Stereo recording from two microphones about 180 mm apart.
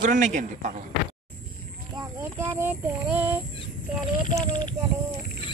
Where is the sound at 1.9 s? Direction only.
15° right (ahead or behind).